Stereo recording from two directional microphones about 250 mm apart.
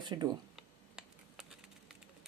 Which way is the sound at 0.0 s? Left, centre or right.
Centre.